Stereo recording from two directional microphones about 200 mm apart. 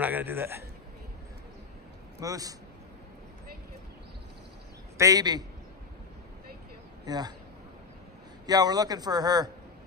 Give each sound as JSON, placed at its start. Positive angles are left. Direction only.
{"t": 0.0, "sound": "a man's voice", "side_deg": -10}
{"t": 2.1, "sound": "a man's voice", "side_deg": -15}
{"t": 4.9, "sound": "a man's voice", "side_deg": -15}
{"t": 7.1, "sound": "a man's voice", "side_deg": -20}
{"t": 8.5, "sound": "a man's voice", "side_deg": -20}